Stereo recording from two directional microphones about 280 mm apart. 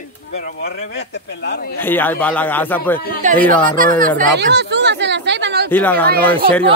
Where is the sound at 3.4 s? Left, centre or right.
Centre.